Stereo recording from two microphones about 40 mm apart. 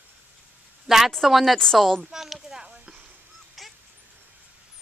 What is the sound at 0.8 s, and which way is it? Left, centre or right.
Speech, centre.